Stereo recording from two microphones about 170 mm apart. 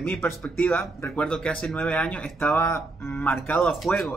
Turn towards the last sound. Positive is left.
turn(degrees=5)  # may be behind; listen again after turning